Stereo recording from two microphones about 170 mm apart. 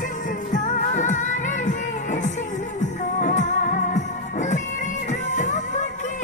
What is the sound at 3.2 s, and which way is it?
Music, 45° left (ahead or behind).